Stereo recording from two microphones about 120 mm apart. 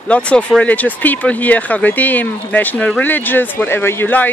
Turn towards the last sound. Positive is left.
turn(degrees=15)  # may be behind; listen again after turning